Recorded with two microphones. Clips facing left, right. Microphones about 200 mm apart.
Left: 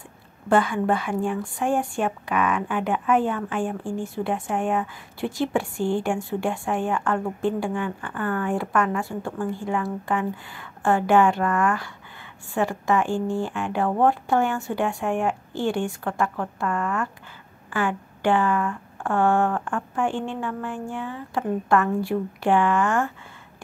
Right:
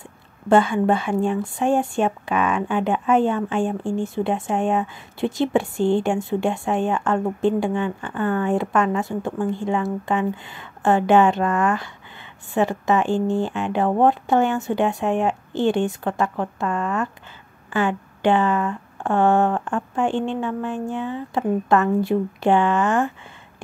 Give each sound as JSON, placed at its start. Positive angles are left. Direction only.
{"t": 0.5, "sound": "speech", "side_deg": -25}